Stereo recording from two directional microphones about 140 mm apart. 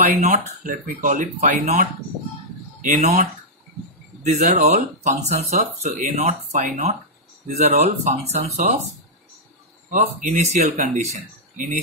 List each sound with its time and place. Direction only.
0.0 s speech: 60° right (ahead or behind)
2.8 s speech: 60° right (ahead or behind)
7.4 s speech: 55° right (ahead or behind)
9.8 s speech: 65° right (ahead or behind)